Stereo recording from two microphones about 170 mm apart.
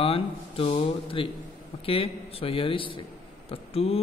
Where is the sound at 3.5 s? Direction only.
35° left (ahead or behind).